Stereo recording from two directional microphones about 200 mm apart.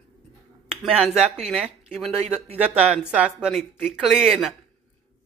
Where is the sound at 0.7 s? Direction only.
5° right (ahead or behind).